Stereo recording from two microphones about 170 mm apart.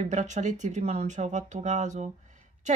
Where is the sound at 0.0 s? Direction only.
45° right (ahead or behind).